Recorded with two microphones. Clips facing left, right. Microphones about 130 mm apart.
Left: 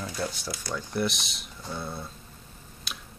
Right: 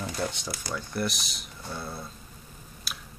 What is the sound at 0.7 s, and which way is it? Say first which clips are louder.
Speech: left 2 dB; centre (ahead or behind).